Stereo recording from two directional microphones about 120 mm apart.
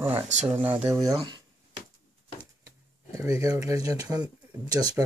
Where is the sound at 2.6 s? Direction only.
25° right (ahead or behind).